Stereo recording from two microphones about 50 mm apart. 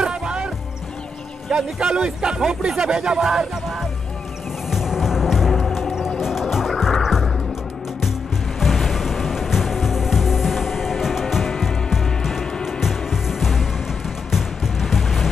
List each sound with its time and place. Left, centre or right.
0.0 s music: centre
1.5 s speech: centre
4.6 s music: centre
8.5 s music: centre